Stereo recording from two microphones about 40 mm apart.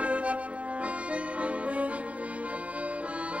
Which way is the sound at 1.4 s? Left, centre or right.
Right.